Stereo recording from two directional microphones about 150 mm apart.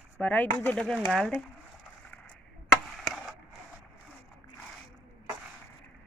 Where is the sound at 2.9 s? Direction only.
Centre (ahead or behind).